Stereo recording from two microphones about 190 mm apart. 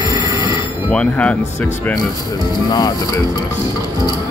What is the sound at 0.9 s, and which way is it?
Speech, 5° left (ahead or behind).